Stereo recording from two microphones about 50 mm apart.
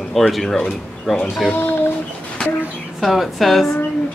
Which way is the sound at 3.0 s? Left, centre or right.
Centre.